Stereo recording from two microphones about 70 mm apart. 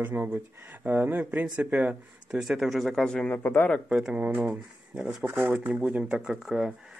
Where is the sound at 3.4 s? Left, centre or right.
Left.